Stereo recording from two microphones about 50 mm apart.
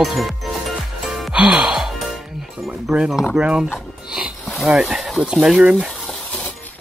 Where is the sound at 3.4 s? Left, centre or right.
Right.